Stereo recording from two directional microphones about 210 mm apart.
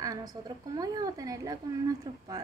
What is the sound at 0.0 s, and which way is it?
A woman's voice, 15° right (ahead or behind).